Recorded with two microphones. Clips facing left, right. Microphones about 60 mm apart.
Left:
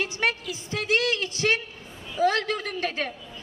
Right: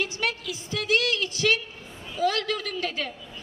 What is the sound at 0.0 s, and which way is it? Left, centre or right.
A woman's voice, left.